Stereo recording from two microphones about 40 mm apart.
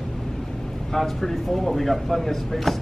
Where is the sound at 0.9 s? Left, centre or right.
Centre.